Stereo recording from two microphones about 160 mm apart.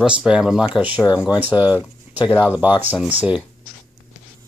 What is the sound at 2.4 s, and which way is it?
Speech, 10° right (ahead or behind).